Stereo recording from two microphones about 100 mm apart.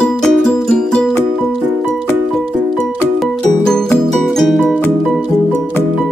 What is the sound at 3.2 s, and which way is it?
Music, 5° left (ahead or behind).